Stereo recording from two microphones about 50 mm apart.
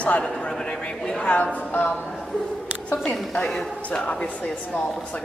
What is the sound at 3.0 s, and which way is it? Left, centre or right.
Speech, left.